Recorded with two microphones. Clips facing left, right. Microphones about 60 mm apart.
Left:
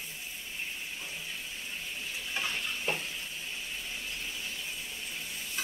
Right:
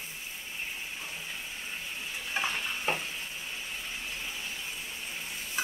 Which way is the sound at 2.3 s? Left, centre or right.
Right.